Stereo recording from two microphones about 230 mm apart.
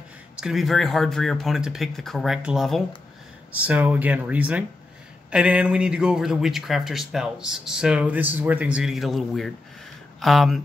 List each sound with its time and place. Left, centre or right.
0.4 s speech: centre